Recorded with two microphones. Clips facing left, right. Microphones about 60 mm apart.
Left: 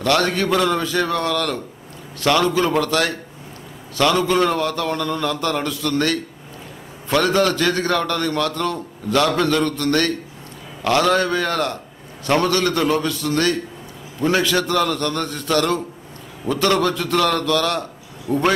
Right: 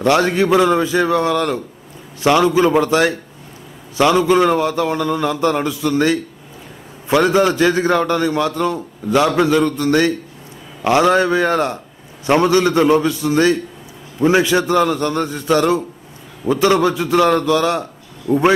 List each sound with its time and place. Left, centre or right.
0.0 s a man's voice: centre